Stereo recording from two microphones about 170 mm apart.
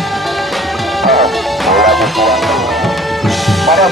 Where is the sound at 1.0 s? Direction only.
Centre (ahead or behind).